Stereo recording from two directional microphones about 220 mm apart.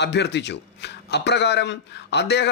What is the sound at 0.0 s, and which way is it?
A man's voice, 50° left (ahead or behind).